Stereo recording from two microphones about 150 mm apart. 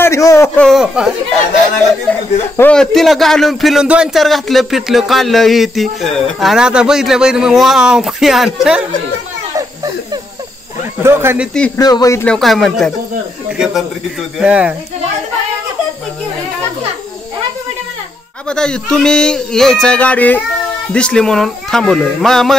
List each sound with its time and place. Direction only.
0.0 s a man's voice: 20° left (ahead or behind)
0.6 s a man's voice: centre (ahead or behind)
2.5 s a man's voice: 10° left (ahead or behind)
11.0 s speech: 15° right (ahead or behind)
11.5 s speech: 10° left (ahead or behind)
11.8 s speech: 25° left (ahead or behind)
12.3 s a man's voice: centre (ahead or behind)
14.4 s speech: 10° right (ahead or behind)
18.5 s a man's voice: 5° left (ahead or behind)